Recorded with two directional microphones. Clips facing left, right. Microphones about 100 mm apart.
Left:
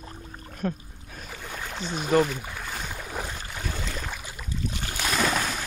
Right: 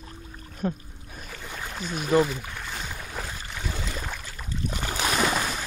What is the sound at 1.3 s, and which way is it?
Boat, centre (ahead or behind).